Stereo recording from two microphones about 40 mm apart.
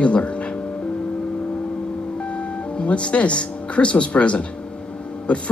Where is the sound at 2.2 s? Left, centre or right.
Left.